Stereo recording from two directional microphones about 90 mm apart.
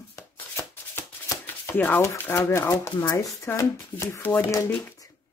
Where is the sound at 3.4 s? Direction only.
30° left (ahead or behind).